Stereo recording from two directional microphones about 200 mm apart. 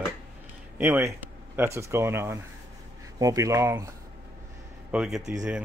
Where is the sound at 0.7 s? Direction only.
10° right (ahead or behind).